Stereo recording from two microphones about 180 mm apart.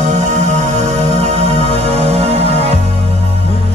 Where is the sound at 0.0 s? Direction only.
40° right (ahead or behind).